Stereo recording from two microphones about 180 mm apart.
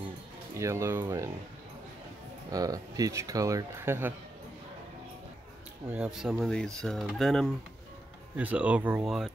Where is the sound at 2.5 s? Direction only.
20° right (ahead or behind).